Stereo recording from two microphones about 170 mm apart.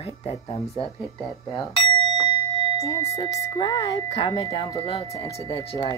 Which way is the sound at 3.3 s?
30° left (ahead or behind).